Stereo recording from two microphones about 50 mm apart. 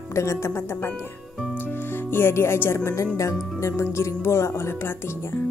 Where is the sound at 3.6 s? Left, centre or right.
Left.